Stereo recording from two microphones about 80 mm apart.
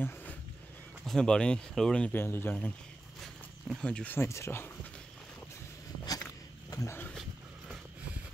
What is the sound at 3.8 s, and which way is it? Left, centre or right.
Speech, centre.